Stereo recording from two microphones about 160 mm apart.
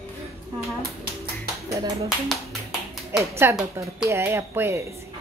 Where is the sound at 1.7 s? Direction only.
20° right (ahead or behind).